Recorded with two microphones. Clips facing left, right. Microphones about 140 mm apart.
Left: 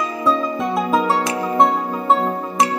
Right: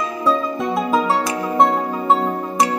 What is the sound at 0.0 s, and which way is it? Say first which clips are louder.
Music: even; centre (ahead or behind).